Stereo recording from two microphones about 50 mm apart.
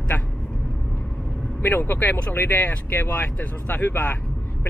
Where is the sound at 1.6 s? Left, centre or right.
Left.